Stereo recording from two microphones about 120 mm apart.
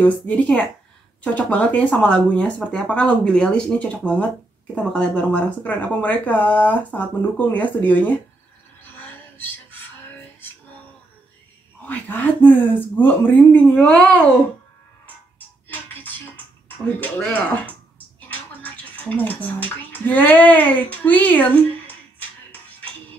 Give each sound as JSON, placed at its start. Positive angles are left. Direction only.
{"t": 0.0, "sound": "speech", "side_deg": 15}
{"t": 8.9, "sound": "a sound", "side_deg": 15}
{"t": 11.8, "sound": "speech", "side_deg": 15}
{"t": 15.0, "sound": "music", "side_deg": 15}